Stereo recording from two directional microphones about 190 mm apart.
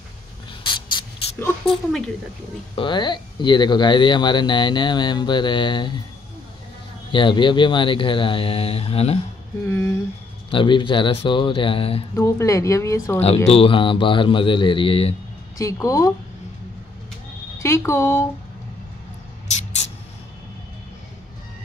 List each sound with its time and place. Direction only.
1.4 s a woman's voice: 5° left (ahead or behind)
2.7 s speech: 25° left (ahead or behind)
7.1 s speech: 25° left (ahead or behind)
9.7 s speech: 15° left (ahead or behind)
10.5 s speech: 25° left (ahead or behind)
12.2 s speech: 15° left (ahead or behind)
13.5 s speech: 30° left (ahead or behind)
15.5 s speech: 15° left (ahead or behind)
17.6 s speech: 15° left (ahead or behind)